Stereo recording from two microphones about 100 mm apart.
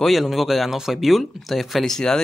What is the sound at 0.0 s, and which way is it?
Speech, centre (ahead or behind).